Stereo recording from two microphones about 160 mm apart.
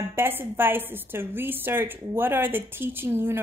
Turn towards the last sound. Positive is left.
turn(degrees=-15)  # may be behind; listen again after turning